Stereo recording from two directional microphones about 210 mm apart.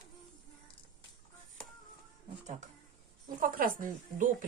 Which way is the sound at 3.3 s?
40° right (ahead or behind).